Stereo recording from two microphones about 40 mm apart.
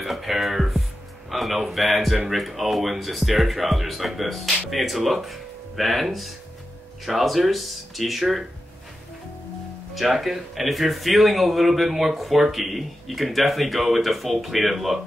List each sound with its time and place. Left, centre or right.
0.0 s speech: centre
9.9 s speech: centre